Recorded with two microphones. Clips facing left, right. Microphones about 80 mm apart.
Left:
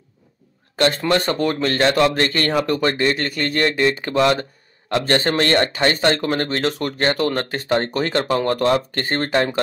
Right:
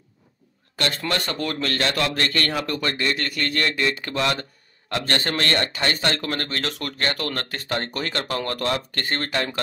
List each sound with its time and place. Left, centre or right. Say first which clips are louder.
0.7 s speech: left 8 dB; left